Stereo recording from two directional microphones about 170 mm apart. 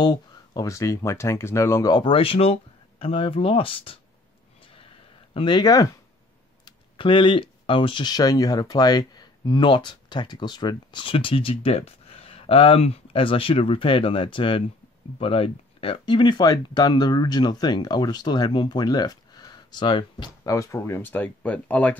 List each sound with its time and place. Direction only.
0.0 s speech: 25° left (ahead or behind)
5.3 s speech: 25° left (ahead or behind); by 21.9 s 10° left (ahead or behind)